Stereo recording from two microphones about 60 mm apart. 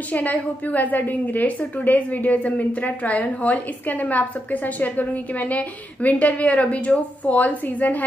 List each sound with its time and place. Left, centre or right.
0.1 s a woman's voice: left